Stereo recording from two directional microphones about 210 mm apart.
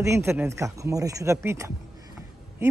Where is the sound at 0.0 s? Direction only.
15° right (ahead or behind).